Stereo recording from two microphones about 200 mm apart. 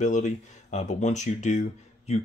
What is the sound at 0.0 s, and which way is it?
Speech, 35° left (ahead or behind).